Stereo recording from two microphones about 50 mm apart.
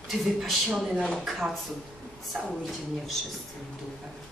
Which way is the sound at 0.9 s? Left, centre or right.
Centre.